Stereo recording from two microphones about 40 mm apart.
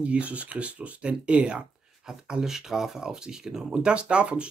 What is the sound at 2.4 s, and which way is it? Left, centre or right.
Speech, centre.